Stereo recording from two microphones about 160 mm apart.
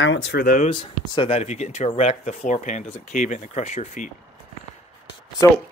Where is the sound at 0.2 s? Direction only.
75° left (ahead or behind).